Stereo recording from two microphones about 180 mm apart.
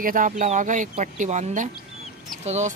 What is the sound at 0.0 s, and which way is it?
Speech, 50° right (ahead or behind).